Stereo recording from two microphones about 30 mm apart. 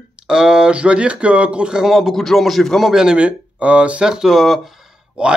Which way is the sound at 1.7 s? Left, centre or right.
Centre.